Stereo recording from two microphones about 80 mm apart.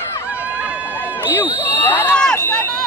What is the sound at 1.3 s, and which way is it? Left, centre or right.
Ding, left.